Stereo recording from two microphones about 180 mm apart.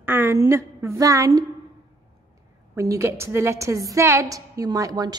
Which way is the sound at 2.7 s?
15° right (ahead or behind).